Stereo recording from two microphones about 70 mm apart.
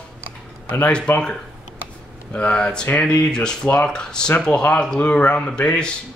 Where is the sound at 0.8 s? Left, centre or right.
Centre.